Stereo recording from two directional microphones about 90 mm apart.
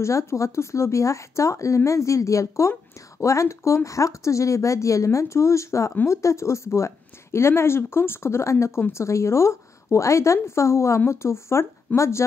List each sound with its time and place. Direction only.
0.0 s speech: 35° left (ahead or behind)